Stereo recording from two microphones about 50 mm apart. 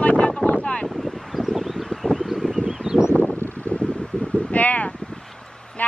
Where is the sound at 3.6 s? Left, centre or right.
Left.